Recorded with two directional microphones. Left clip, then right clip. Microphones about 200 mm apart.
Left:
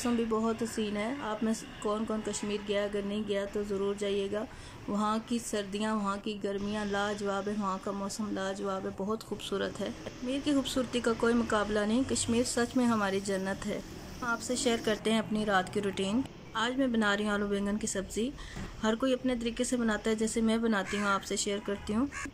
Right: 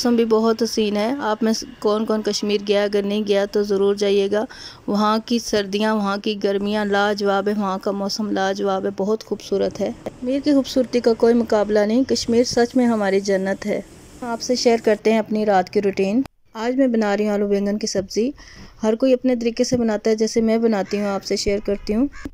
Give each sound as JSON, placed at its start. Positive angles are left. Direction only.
{"t": 0.0, "sound": "speech", "side_deg": -45}